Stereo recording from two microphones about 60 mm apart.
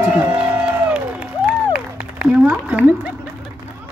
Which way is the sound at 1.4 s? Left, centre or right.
Centre.